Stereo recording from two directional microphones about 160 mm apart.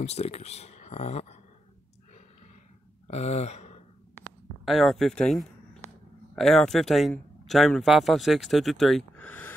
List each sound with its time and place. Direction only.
0.0 s speech: 40° left (ahead or behind)
3.1 s speech: 45° left (ahead or behind)
4.6 s speech: centre (ahead or behind)